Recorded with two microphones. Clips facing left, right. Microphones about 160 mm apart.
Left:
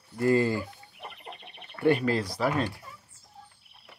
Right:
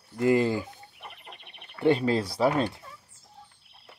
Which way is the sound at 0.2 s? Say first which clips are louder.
Right 1 dB; 20° right (ahead or behind).